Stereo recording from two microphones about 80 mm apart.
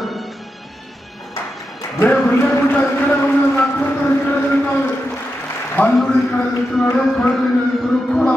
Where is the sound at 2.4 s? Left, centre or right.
Left.